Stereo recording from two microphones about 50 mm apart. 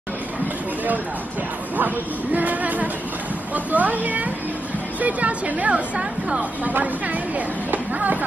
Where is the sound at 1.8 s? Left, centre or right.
Right.